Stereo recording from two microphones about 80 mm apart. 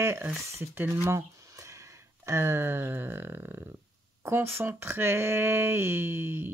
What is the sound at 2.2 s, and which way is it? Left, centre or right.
Speech, right.